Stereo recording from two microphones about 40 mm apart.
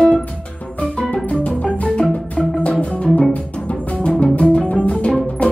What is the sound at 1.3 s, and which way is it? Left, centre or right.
Music, left.